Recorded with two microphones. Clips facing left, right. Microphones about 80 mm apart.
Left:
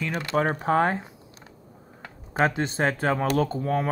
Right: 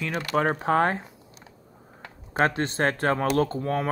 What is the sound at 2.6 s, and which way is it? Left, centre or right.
Speech, centre.